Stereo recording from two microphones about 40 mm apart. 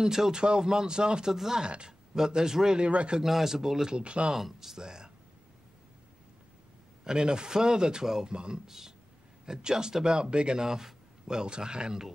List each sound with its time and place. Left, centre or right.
0.0 s a man's voice: centre
1.3 s a man's voice: centre
1.6 s a man's voice: right
2.8 s speech: right
3.3 s a man's voice: centre
4.0 s speech: right
4.3 s a man's voice: centre
7.1 s a man's voice: centre
8.6 s a man's voice: centre